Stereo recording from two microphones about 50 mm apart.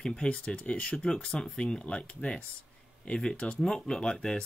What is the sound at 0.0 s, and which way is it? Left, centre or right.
Speech, centre.